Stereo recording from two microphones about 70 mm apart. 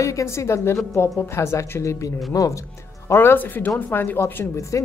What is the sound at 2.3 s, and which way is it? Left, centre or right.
Speech, left.